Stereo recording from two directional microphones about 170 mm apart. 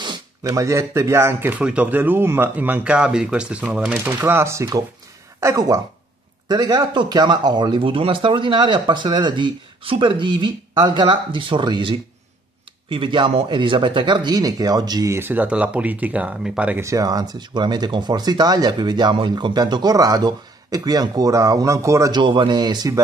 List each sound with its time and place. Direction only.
0.0 s speech: 20° right (ahead or behind)